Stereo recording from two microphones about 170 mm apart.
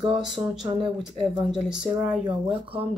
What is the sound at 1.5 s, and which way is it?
Speech, 5° right (ahead or behind).